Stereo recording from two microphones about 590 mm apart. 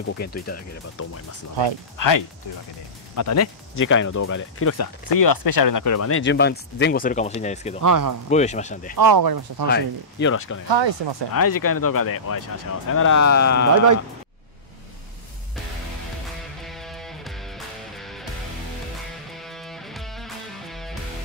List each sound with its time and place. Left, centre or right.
0.0 s speech: centre
7.8 s speech: right
8.3 s speech: centre
8.9 s speech: right
9.7 s speech: centre
10.7 s speech: right
11.3 s speech: left
16.6 s music: centre
19.3 s music: centre